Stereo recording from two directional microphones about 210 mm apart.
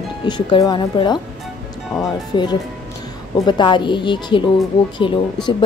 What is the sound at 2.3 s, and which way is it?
Speech, 20° left (ahead or behind).